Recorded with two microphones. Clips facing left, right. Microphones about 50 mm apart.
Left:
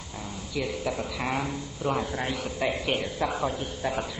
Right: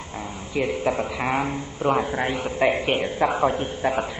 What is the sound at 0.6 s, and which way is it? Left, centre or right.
A man's voice, right.